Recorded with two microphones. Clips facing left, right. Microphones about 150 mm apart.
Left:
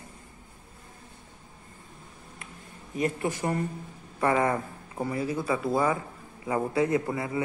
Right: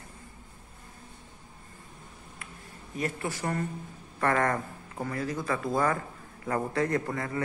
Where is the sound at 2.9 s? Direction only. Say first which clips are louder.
Left 4 dB; 20° left (ahead or behind).